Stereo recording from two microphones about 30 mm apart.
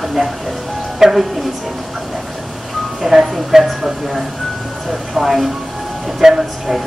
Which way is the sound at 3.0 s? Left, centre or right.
Centre.